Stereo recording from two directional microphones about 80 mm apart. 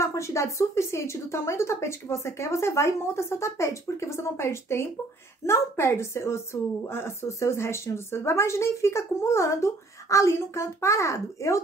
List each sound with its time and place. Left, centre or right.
0.0 s a woman's voice: left